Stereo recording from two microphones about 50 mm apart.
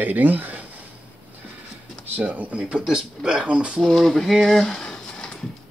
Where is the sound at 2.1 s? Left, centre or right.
Right.